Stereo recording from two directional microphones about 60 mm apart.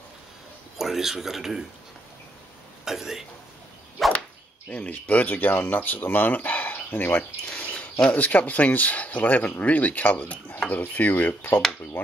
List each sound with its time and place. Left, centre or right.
0.7 s a man's voice: centre
2.8 s speech: centre
4.0 s whip: centre
4.6 s speech: left